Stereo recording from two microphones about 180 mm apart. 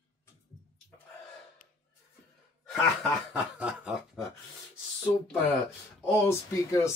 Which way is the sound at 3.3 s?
5° right (ahead or behind).